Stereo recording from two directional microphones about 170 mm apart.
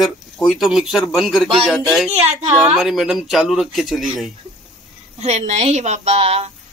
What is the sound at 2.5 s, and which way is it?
Speech, 5° right (ahead or behind).